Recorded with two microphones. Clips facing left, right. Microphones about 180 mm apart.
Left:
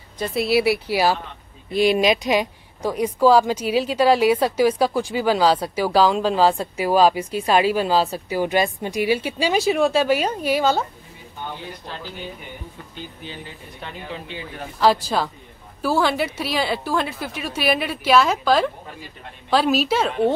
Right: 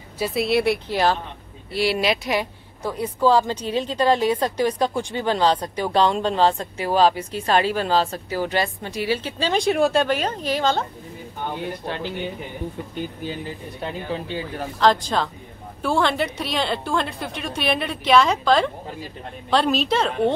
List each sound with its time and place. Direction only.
0.2 s a woman's voice: centre (ahead or behind)
1.7 s speech: 20° left (ahead or behind)
11.6 s speech: 65° right (ahead or behind)
12.9 s speech: 45° right (ahead or behind)
14.8 s a woman's voice: 10° left (ahead or behind)